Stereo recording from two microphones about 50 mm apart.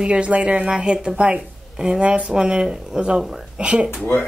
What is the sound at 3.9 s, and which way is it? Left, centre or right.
Speech, left.